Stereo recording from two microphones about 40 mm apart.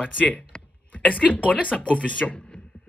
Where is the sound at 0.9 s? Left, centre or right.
Left.